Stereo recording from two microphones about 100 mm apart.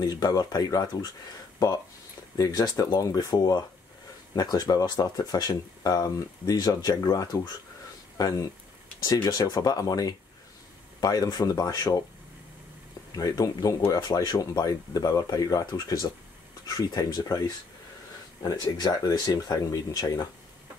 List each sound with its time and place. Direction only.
0.0 s speech: 40° left (ahead or behind)
2.3 s speech: 40° left (ahead or behind)
13.1 s speech: 35° left (ahead or behind)
18.8 s speech: 40° left (ahead or behind)